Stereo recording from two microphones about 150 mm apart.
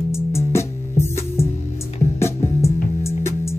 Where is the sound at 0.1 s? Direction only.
20° left (ahead or behind).